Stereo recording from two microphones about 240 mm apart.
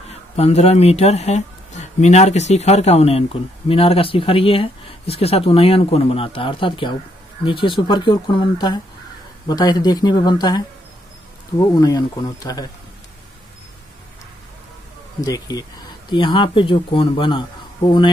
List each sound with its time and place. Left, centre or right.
0.1 s speech: left
15.1 s speech: centre